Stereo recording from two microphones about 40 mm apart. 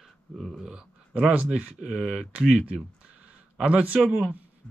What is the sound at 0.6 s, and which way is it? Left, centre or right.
A man's voice, centre.